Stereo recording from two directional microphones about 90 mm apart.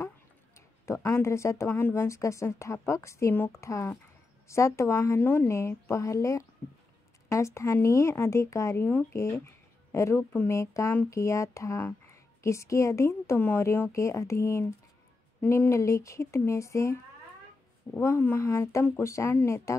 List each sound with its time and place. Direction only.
0.6 s speech: 30° left (ahead or behind)
18.0 s speech: 25° left (ahead or behind)